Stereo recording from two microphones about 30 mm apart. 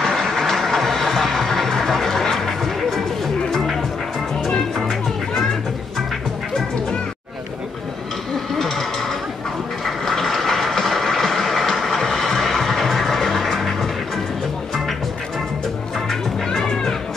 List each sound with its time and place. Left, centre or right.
0.0 s vehicle: centre
2.3 s music: centre
8.5 s a sound: centre
9.8 s vehicle: centre
16.4 s music: left